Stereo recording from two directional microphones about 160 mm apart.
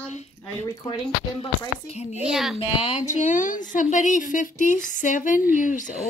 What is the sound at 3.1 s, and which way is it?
Speech, 50° left (ahead or behind).